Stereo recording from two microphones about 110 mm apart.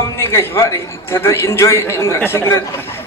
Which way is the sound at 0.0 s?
25° left (ahead or behind).